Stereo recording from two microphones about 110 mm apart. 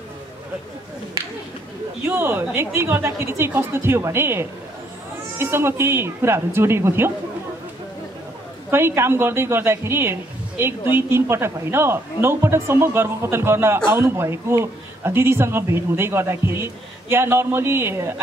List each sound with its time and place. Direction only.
2.0 s a man's voice: 20° right (ahead or behind)
8.6 s a man's voice: 20° right (ahead or behind)